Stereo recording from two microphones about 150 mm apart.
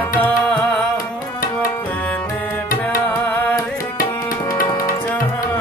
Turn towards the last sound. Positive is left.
turn(degrees=20)  # may be behind; listen again after turning